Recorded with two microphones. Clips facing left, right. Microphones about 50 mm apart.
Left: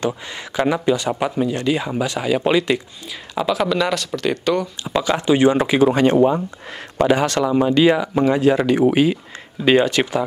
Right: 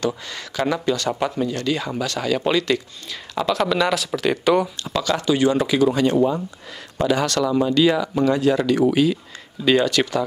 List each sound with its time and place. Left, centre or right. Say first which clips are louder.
0.0 s speech: left 1 dB; left; by 4.6 s centre
4.8 s speech: left 3 dB; left
7.1 s speech: left 2 dB; left